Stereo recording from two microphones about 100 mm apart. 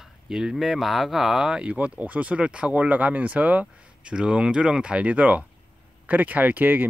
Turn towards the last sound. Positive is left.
turn(degrees=-20)  # may be behind; listen again after turning